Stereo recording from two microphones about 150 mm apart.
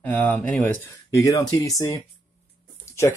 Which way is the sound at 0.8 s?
20° left (ahead or behind).